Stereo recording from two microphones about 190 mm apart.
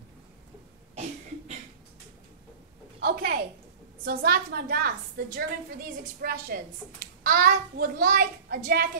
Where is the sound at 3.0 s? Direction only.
55° right (ahead or behind).